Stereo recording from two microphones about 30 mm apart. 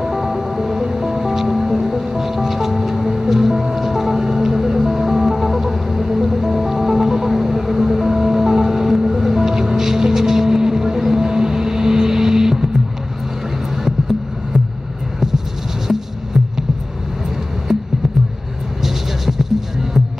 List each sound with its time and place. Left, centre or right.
0.0 s music: centre
13.8 s a sound: centre
15.9 s music: centre
17.7 s music: centre